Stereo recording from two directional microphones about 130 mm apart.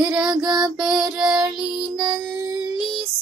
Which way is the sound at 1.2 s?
5° right (ahead or behind).